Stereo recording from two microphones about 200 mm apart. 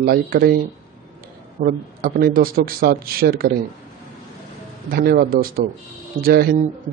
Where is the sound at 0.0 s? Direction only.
45° right (ahead or behind).